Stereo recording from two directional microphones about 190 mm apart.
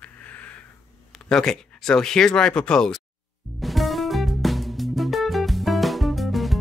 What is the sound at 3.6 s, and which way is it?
Music, centre (ahead or behind).